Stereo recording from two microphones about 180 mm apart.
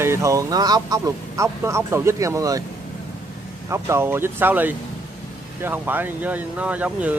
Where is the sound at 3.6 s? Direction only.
15° right (ahead or behind).